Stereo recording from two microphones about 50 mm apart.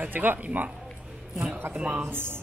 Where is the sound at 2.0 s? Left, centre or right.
Right.